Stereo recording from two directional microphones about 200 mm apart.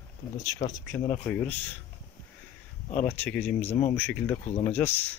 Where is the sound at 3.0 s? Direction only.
5° left (ahead or behind).